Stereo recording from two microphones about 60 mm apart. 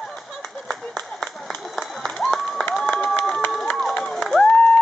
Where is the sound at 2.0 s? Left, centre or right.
Centre.